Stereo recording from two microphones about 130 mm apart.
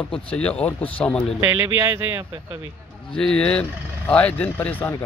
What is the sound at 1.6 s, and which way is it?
Speech, 20° right (ahead or behind).